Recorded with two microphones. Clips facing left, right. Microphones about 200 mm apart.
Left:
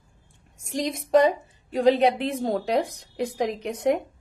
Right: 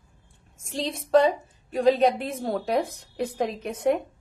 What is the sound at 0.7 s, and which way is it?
A woman's voice, 15° left (ahead or behind).